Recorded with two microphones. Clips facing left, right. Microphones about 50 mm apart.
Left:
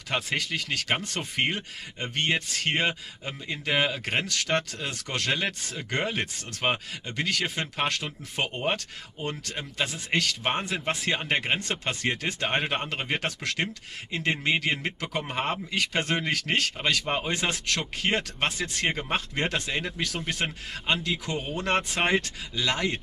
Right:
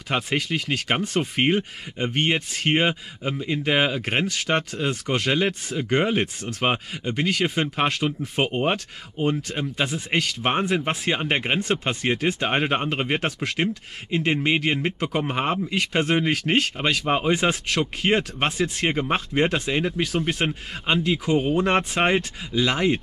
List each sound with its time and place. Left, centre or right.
0.1 s speech: centre
8.4 s speech: right
8.7 s speech: centre
17.0 s speech: right
17.3 s speech: centre